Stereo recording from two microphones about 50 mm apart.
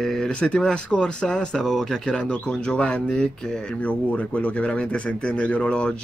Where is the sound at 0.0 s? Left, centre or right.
Centre.